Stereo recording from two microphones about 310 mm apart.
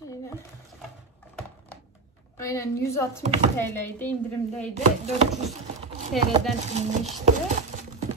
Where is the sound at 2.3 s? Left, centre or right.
Centre.